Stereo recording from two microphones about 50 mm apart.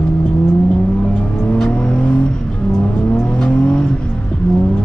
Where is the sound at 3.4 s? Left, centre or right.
Left.